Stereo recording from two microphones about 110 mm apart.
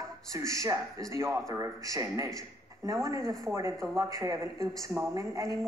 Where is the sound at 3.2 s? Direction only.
5° left (ahead or behind).